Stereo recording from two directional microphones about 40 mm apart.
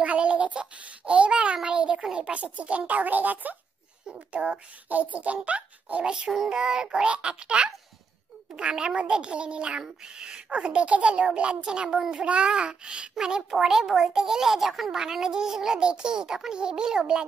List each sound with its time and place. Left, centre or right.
0.0 s child singing: right
2.1 s a child's voice: right
4.3 s a child's voice: right
4.8 s a child's voice: right
6.5 s a child's voice: right